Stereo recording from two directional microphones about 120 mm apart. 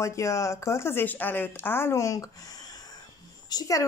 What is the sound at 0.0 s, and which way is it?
A woman's voice, 25° left (ahead or behind).